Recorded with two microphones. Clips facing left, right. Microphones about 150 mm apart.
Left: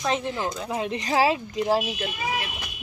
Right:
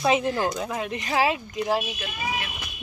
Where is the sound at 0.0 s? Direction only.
5° right (ahead or behind).